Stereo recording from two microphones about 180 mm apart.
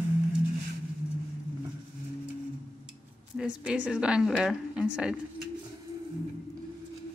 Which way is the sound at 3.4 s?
5° right (ahead or behind).